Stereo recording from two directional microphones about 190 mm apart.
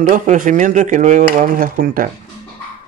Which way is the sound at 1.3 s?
40° right (ahead or behind).